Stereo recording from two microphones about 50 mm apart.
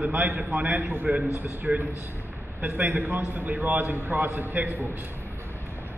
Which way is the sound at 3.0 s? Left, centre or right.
Right.